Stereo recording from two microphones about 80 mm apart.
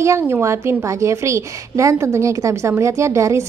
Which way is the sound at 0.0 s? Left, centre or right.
Right.